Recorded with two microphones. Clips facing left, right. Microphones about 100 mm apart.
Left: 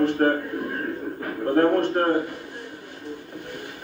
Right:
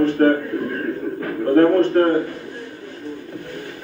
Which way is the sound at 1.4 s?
15° left (ahead or behind).